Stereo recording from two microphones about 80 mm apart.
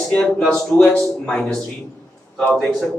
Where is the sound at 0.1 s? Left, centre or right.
Centre.